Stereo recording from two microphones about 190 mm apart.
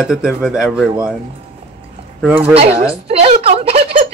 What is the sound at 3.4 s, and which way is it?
Speech, 30° right (ahead or behind).